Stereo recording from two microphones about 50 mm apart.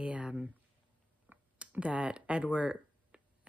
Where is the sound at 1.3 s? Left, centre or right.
Right.